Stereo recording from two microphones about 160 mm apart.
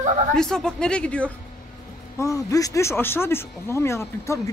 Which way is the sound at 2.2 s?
20° left (ahead or behind).